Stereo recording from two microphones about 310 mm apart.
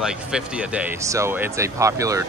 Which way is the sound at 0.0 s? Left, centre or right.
Centre.